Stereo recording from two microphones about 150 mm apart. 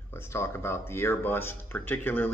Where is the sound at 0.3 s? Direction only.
15° left (ahead or behind).